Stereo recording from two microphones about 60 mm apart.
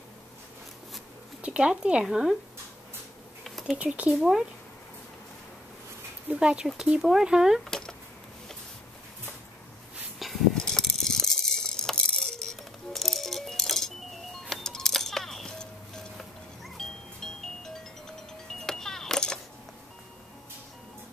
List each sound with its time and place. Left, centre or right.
1.4 s speech: centre
3.4 s a sound: centre
3.7 s speech: right
6.2 s speech: centre
7.0 s speech: centre
10.1 s a sound: centre
10.5 s rattle: centre
14.5 s music: centre